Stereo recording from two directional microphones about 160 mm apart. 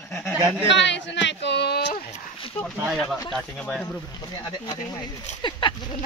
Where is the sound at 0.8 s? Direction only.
90° left.